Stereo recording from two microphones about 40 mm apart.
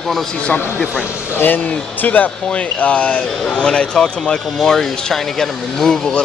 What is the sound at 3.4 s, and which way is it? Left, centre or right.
A man's voice, left.